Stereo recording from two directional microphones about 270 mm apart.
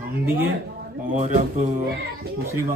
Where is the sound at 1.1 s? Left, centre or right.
Right.